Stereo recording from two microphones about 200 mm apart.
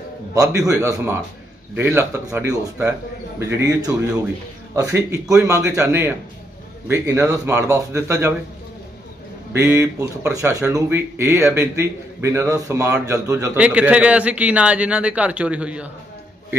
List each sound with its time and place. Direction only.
0.3 s speech: 15° right (ahead or behind)
9.5 s speech: 10° right (ahead or behind)